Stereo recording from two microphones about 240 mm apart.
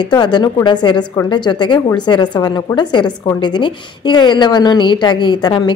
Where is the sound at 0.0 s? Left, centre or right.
Centre.